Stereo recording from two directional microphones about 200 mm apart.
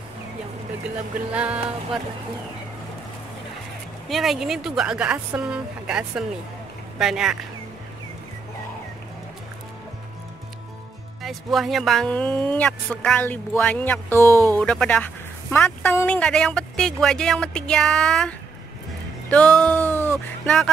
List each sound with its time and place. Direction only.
0.8 s speech: 5° right (ahead or behind)
4.1 s speech: centre (ahead or behind)
11.2 s speech: centre (ahead or behind)
14.2 s speech: 15° right (ahead or behind)
14.6 s speech: 5° left (ahead or behind)
19.3 s music: 5° left (ahead or behind)